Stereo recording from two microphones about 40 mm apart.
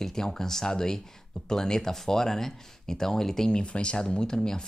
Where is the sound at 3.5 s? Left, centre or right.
Left.